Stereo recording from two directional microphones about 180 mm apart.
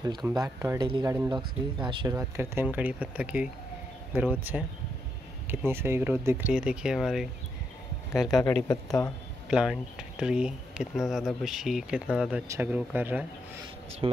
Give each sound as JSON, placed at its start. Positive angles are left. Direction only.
{"t": 0.4, "sound": "speech", "side_deg": -20}
{"t": 2.1, "sound": "speech", "side_deg": -15}
{"t": 9.5, "sound": "speech", "side_deg": -5}
{"t": 14.0, "sound": "speech", "side_deg": -25}